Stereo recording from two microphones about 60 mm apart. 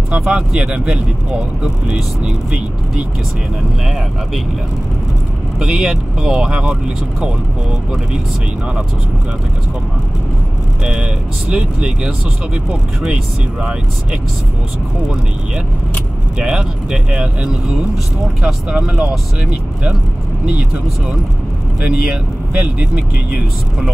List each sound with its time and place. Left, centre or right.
0.3 s speech: centre
5.6 s speech: centre
10.8 s speech: centre
16.3 s speech: centre
21.8 s speech: right